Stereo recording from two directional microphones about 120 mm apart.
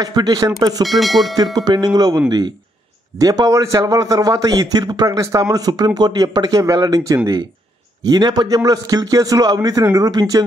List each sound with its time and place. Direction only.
0.0 s a man's voice: 35° right (ahead or behind)
0.8 s speech: centre (ahead or behind)
1.3 s a man's voice: 35° right (ahead or behind)
8.0 s a man's voice: 35° right (ahead or behind)